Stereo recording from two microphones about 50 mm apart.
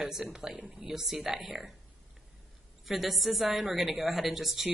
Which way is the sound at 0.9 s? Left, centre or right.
Centre.